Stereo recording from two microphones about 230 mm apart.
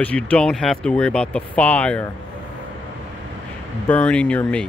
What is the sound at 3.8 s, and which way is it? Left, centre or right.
Speech, centre.